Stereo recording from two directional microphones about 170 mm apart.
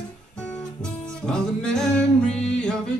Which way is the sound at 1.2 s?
5° left (ahead or behind).